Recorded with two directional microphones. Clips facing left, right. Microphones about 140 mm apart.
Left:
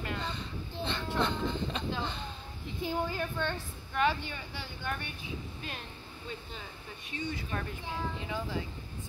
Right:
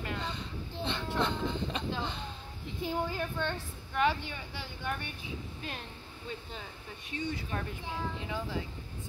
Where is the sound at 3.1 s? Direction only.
5° right (ahead or behind).